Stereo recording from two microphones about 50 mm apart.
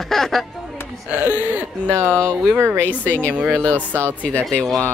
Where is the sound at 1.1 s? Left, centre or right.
Right.